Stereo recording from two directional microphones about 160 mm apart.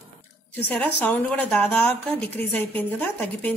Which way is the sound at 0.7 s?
10° left (ahead or behind).